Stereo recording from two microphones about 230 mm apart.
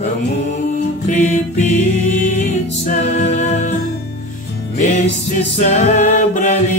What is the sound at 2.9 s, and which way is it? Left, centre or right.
Music, left.